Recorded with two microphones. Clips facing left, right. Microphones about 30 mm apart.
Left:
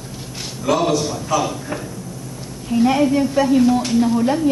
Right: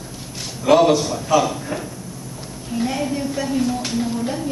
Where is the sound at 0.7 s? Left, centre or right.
Centre.